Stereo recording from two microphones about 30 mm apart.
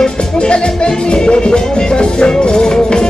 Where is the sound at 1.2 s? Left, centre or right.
Left.